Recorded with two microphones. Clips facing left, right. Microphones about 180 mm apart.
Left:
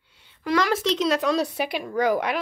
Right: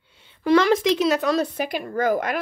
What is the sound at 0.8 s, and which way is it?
Speech, 10° right (ahead or behind).